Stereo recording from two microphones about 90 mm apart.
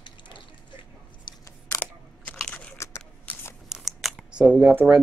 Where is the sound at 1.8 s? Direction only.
20° left (ahead or behind).